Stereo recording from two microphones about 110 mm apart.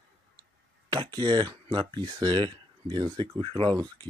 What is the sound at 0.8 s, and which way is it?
Speech, 40° right (ahead or behind).